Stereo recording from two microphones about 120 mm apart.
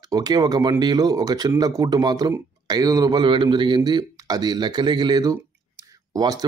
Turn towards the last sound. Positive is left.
turn(degrees=-35)  # may be behind; listen again after turning